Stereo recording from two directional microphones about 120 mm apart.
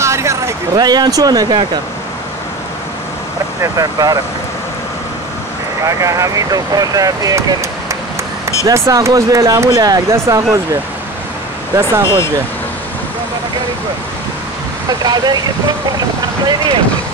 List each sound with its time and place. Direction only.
0.0 s vehicle: 25° right (ahead or behind)
0.7 s speech: 35° right (ahead or behind)
3.6 s speech: 30° right (ahead or behind)
5.9 s speech: 25° right (ahead or behind)
8.6 s speech: 25° right (ahead or behind)
14.9 s speech: 35° right (ahead or behind)